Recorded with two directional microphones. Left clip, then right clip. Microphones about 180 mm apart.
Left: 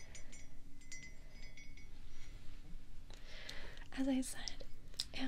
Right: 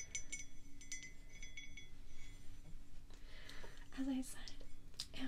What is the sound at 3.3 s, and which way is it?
Music, 20° left (ahead or behind).